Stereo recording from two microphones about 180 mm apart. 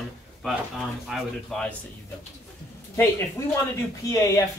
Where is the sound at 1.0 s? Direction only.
5° left (ahead or behind).